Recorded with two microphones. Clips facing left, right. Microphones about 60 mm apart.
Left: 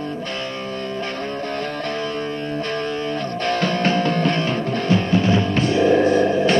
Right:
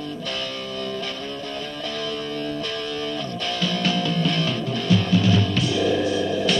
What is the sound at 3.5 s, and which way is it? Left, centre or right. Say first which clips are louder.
Music: left 5 dB; left.